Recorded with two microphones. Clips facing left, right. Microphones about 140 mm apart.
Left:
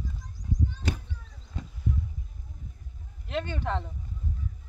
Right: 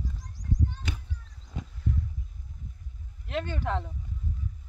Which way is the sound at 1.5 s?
15° right (ahead or behind).